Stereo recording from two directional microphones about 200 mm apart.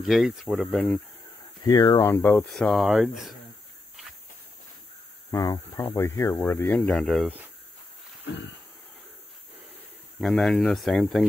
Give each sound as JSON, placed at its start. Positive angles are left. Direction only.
{"t": 0.0, "sound": "speech", "side_deg": 0}
{"t": 1.6, "sound": "speech", "side_deg": 20}
{"t": 5.3, "sound": "speech", "side_deg": 15}
{"t": 10.2, "sound": "speech", "side_deg": 0}